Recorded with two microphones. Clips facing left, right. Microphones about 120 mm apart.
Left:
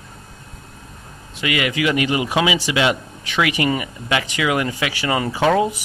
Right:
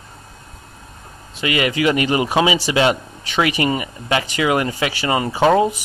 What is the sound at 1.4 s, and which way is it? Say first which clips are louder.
Speech: right 2 dB; 35° right (ahead or behind).